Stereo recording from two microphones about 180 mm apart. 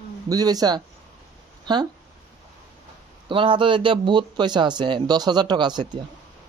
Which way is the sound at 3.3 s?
30° right (ahead or behind).